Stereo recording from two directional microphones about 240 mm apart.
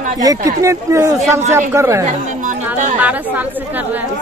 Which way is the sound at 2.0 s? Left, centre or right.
Right.